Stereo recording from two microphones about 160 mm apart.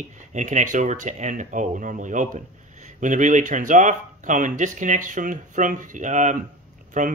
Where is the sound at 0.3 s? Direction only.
50° right (ahead or behind).